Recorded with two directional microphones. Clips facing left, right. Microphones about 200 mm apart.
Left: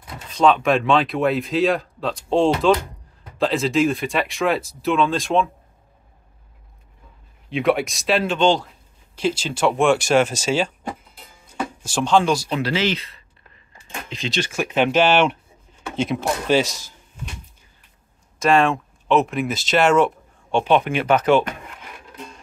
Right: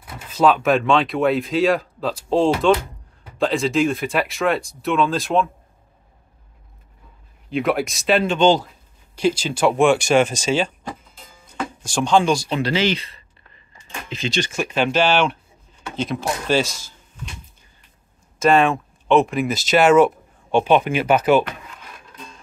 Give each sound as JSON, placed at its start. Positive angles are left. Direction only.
{"t": 0.0, "sound": "speech", "side_deg": -5}
{"t": 7.4, "sound": "speech", "side_deg": 0}
{"t": 14.7, "sound": "speech", "side_deg": 20}
{"t": 18.4, "sound": "speech", "side_deg": 0}